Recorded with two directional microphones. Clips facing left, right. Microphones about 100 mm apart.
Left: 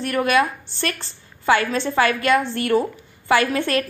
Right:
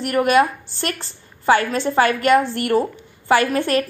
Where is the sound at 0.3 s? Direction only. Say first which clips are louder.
Right 4 dB; 30° right (ahead or behind).